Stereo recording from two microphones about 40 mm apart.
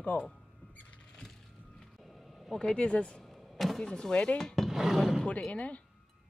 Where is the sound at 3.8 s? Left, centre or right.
Centre.